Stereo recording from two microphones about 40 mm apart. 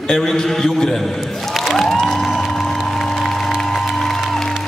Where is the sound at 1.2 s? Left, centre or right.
Centre.